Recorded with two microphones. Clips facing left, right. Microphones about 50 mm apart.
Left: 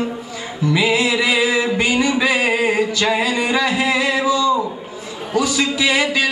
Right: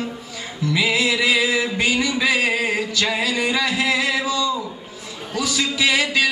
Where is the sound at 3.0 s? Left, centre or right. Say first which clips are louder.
Left 3 dB; centre.